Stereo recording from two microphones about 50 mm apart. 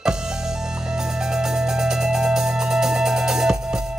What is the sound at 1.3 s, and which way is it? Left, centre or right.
Music, centre.